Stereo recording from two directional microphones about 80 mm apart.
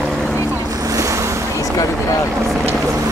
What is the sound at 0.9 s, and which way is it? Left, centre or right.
Waves, right.